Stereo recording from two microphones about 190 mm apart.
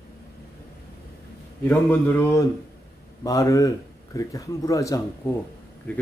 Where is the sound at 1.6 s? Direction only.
10° left (ahead or behind).